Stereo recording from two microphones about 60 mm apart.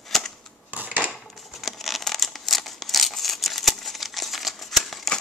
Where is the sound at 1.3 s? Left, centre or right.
Centre.